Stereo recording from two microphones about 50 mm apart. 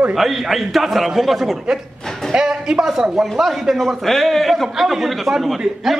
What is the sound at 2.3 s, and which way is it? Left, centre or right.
A man's voice, centre.